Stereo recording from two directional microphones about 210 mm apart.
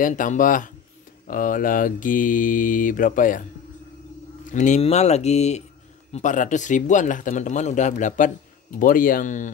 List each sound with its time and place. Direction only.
0.0 s a man's voice: 40° left (ahead or behind)
4.5 s a man's voice: 35° left (ahead or behind)